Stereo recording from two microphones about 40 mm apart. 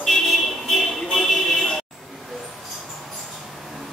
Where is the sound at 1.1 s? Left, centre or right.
Centre.